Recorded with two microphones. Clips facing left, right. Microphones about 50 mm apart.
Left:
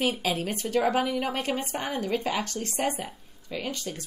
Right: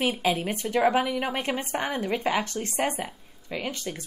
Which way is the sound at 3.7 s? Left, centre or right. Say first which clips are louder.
Right 1 dB; centre.